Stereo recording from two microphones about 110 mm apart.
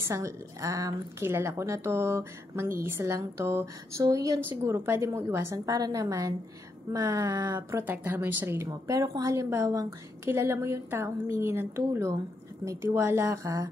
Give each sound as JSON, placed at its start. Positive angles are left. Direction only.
{"t": 0.0, "sound": "a woman's voice", "side_deg": -30}
{"t": 7.8, "sound": "a woman's voice", "side_deg": -20}